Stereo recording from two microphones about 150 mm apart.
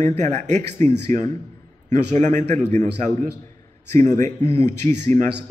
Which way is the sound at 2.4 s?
55° right (ahead or behind).